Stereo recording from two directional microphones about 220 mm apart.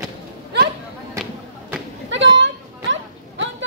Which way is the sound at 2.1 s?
55° right (ahead or behind).